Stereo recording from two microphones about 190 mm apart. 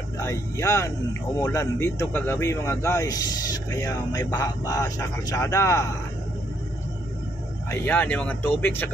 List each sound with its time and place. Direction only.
0.2 s speech: 15° left (ahead or behind)
7.7 s speech: 10° left (ahead or behind)